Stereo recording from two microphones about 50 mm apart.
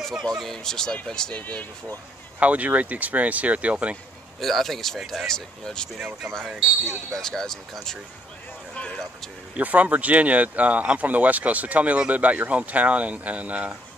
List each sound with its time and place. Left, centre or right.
0.3 s speech: centre
1.3 s speech: left
2.4 s speech: right
4.4 s speech: centre
6.5 s speech: centre
7.2 s speech: centre
9.6 s speech: right